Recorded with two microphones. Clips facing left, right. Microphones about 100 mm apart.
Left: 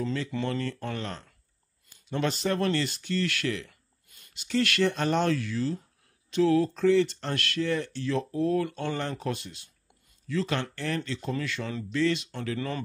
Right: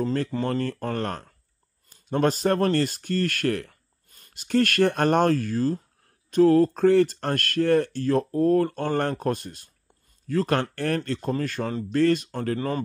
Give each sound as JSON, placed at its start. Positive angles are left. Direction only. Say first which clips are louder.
{"t": 0.0, "sound": "speech", "louder": "right 5 dB", "side_deg": -45}